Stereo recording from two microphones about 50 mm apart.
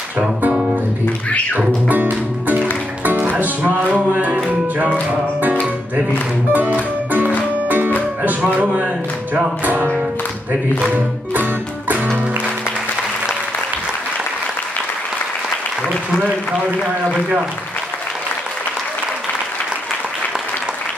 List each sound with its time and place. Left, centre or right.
1.9 s speech: right
4.5 s music: right
16.8 s a man's voice: right